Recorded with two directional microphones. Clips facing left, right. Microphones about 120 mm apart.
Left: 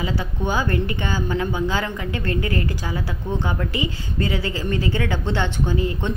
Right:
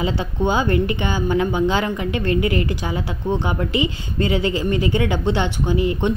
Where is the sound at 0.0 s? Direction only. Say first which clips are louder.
Right 4 dB; 20° right (ahead or behind).